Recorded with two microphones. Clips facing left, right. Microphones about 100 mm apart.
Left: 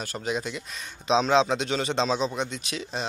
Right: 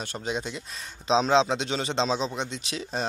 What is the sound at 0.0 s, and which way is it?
Speech, 25° right (ahead or behind).